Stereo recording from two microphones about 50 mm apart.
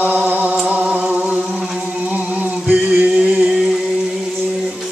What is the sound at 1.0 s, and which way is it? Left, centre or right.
Music, centre.